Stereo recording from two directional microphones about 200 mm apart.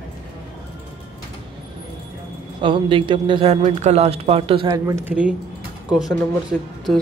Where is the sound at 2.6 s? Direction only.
25° right (ahead or behind); by 6.2 s 5° right (ahead or behind).